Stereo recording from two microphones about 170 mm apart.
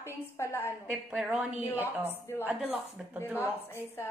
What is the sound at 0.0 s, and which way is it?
Speech, 15° left (ahead or behind).